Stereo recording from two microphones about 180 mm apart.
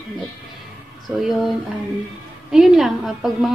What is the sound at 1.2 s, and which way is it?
A woman's voice, centre (ahead or behind).